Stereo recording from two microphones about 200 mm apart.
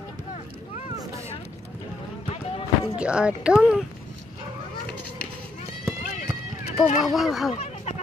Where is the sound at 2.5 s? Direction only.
30° left (ahead or behind).